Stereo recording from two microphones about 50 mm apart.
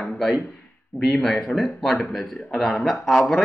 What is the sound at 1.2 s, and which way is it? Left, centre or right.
Speech, centre.